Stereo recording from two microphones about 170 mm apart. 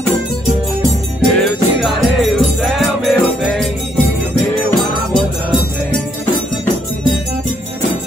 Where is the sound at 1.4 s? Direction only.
Centre (ahead or behind).